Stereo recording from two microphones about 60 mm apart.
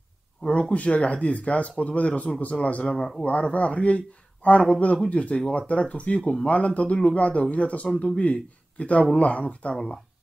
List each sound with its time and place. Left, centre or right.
0.5 s speech: left